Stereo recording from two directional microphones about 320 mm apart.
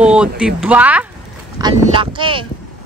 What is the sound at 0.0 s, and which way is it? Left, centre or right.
Speech, centre.